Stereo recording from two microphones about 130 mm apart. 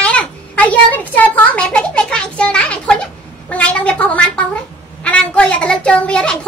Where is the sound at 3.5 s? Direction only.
10° left (ahead or behind).